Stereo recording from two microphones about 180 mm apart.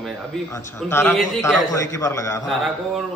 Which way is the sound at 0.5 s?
15° left (ahead or behind).